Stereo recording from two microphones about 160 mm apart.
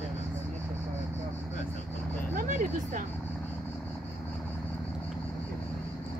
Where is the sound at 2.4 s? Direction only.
55° right (ahead or behind).